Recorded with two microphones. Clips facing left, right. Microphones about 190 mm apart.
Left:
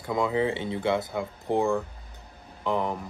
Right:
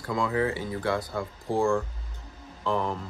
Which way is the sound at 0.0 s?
20° left (ahead or behind).